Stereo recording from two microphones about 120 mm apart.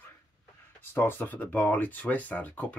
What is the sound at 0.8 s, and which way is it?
Speech, 15° left (ahead or behind).